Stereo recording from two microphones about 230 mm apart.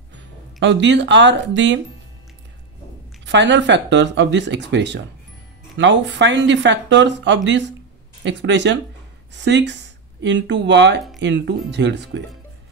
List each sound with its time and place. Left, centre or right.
0.6 s speech: right
3.3 s speech: right